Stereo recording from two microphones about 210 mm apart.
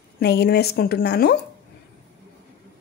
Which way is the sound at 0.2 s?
50° left (ahead or behind).